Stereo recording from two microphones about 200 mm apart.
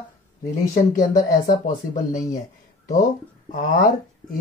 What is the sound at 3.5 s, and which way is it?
Speech, 40° left (ahead or behind).